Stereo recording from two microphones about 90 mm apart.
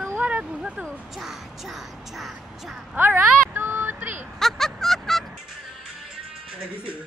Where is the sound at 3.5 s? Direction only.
25° right (ahead or behind).